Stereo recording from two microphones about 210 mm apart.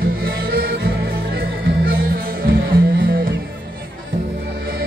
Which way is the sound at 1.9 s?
45° right (ahead or behind).